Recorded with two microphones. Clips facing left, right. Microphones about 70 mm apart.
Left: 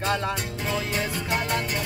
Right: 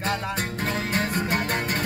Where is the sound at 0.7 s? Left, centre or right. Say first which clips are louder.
Even; right.